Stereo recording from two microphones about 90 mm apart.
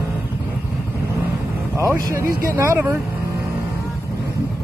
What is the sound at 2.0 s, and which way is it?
Speech, 35° right (ahead or behind).